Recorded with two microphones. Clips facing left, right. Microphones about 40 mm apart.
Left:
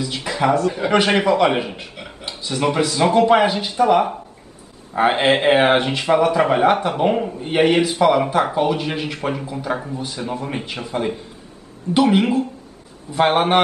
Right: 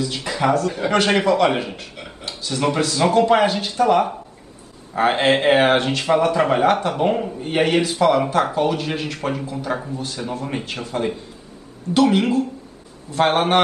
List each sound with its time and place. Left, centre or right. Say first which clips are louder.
0.0 s speech: left 1 dB; centre